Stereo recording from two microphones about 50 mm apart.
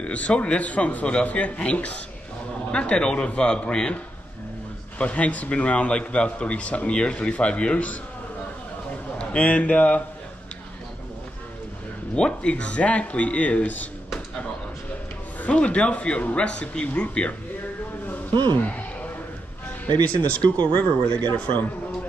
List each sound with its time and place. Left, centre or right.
0.0 s a man's voice: left
4.9 s a man's voice: left
9.2 s a man's voice: left
12.2 s a man's voice: centre
15.4 s a man's voice: left
18.7 s a sound: left
20.1 s a man's voice: left